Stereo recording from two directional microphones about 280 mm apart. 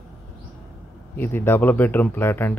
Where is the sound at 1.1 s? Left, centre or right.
Centre.